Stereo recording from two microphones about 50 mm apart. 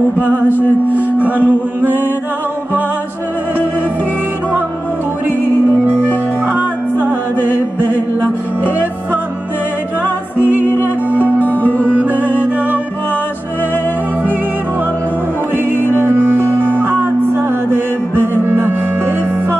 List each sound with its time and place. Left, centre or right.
0.2 s music: right
6.4 s music: right
10.4 s music: right
15.5 s music: right